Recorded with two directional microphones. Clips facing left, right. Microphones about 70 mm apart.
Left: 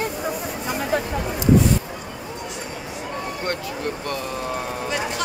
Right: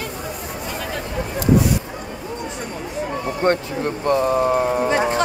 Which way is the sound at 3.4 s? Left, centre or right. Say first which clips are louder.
Right 11 dB; right.